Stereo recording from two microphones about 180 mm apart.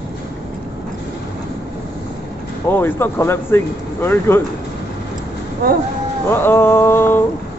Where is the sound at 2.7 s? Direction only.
10° left (ahead or behind).